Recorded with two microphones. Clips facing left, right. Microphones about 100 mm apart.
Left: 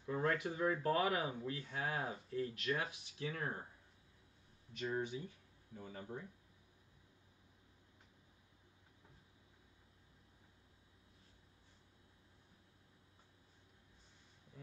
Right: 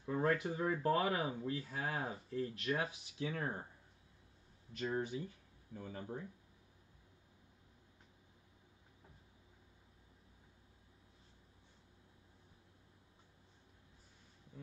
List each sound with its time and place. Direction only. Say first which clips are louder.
0.0 s speech: right 2 dB; 30° right (ahead or behind)
4.7 s speech: right 2 dB; 40° right (ahead or behind)